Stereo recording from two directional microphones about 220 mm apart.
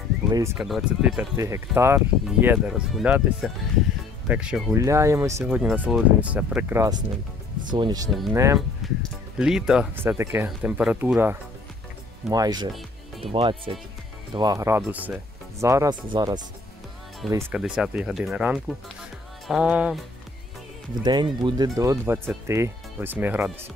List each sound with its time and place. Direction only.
0.6 s speech: centre (ahead or behind); by 8.1 s 20° right (ahead or behind)
8.1 s speech: centre (ahead or behind); by 16.3 s 20° right (ahead or behind)
17.3 s speech: 10° right (ahead or behind)
21.0 s speech: 20° right (ahead or behind)